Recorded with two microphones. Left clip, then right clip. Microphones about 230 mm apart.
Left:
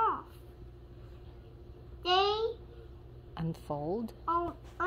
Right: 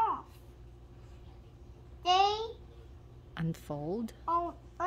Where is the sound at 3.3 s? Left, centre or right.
Right.